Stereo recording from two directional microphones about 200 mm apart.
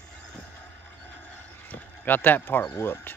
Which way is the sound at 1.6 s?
10° left (ahead or behind).